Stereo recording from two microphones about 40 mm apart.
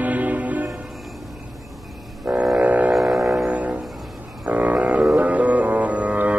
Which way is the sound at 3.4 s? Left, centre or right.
Right.